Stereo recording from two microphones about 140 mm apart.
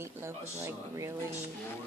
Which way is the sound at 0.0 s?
20° right (ahead or behind).